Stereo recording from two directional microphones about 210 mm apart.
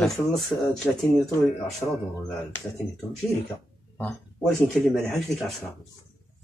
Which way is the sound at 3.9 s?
5° left (ahead or behind).